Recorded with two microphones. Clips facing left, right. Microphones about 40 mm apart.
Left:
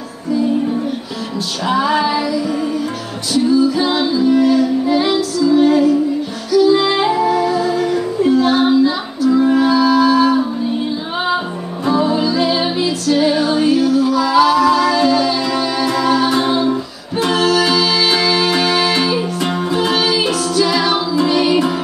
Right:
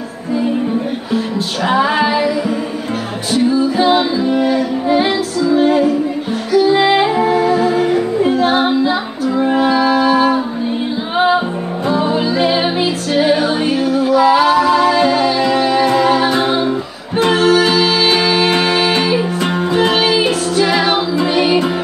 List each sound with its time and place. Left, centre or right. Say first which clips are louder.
1.7 s music: right 1 dB; right
3.3 s music: even; right
12.0 s music: right 1 dB; right
16.3 s music: even; centre
17.3 s music: right 2 dB; right
19.4 s music: right 3 dB; centre
19.9 s music: right 2 dB; right